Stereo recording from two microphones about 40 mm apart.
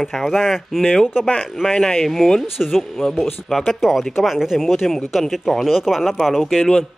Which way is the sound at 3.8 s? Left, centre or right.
Centre.